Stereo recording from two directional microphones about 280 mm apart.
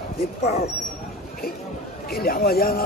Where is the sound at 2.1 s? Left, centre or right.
Left.